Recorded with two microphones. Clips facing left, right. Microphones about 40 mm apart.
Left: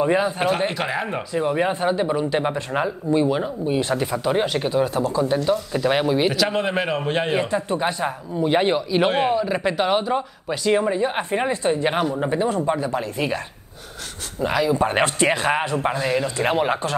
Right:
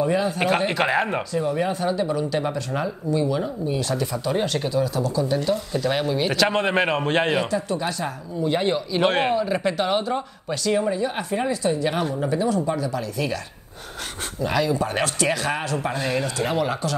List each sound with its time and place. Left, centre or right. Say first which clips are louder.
0.7 s a man's voice: right 3 dB; centre
1.4 s speech: left 5 dB; left
4.7 s a woman's voice: left 3 dB; left
5.7 s speech: left 3 dB; left
6.3 s speech: right 1 dB; centre
6.6 s a man's voice: right 1 dB; centre
7.3 s speech: left 2 dB; left
9.2 s speech: left 1 dB; centre
9.6 s speech: left 2 dB; centre
10.7 s a woman's voice: left 3 dB; left
14.5 s speech: left 2 dB; centre
14.8 s speech: left 4 dB; left
16.0 s speech: left 1 dB; centre
16.3 s a woman's voice: left 3 dB; left